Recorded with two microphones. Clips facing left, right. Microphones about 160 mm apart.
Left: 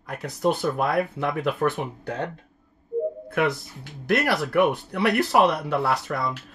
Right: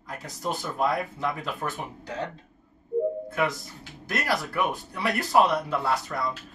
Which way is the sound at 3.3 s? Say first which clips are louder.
Left 3 dB; 65° left (ahead or behind).